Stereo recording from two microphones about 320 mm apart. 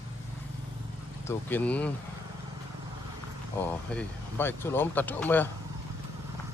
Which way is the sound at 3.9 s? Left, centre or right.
Centre.